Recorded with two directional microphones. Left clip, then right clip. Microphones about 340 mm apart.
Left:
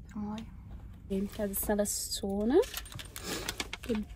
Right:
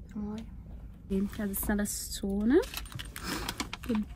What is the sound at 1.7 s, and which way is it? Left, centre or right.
Speech, left.